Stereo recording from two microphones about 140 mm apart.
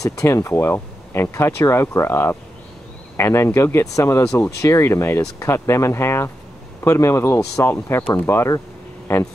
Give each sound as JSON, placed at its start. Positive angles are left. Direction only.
{"t": 0.0, "sound": "speech", "side_deg": 20}